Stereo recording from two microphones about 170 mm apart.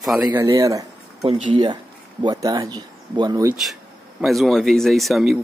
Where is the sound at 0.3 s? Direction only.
20° right (ahead or behind).